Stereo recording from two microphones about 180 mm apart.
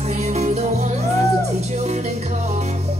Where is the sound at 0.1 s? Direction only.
40° right (ahead or behind).